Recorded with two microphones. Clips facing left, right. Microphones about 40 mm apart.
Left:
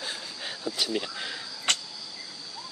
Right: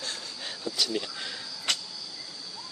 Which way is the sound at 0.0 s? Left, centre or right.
Centre.